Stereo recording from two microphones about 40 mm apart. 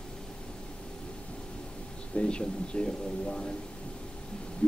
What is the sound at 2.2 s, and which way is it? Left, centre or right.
Speech, left.